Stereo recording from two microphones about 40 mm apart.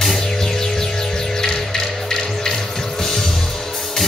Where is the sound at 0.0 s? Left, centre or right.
Centre.